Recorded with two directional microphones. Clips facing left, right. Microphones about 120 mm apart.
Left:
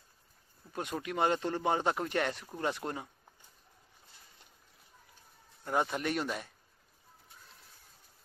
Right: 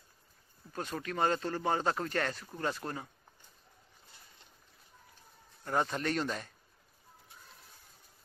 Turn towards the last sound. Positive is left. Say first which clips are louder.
# even
turn(degrees=10)  # may be behind; listen again after turning